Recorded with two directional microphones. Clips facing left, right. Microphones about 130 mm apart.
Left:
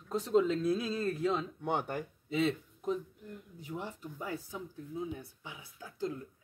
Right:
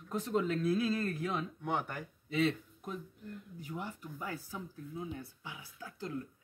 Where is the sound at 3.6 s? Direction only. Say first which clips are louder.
Left 2 dB; 25° left (ahead or behind).